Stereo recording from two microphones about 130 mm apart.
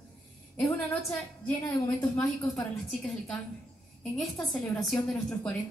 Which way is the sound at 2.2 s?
25° left (ahead or behind).